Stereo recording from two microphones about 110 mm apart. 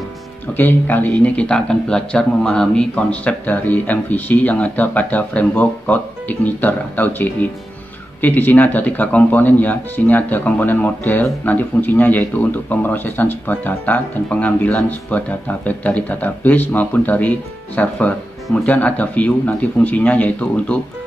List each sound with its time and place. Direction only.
0.6 s speech: 15° left (ahead or behind)